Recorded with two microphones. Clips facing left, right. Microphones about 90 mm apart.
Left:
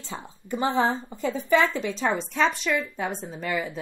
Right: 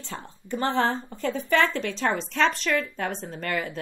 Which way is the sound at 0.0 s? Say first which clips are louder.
Even; 15° left (ahead or behind).